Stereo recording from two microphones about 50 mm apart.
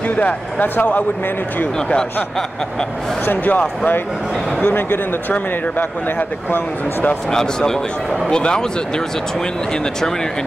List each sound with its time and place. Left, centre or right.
0.1 s speech: left
1.8 s speech: centre
3.3 s speech: left
7.2 s a man's voice: centre